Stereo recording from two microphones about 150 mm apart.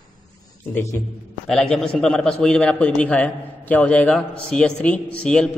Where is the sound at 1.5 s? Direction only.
5° left (ahead or behind).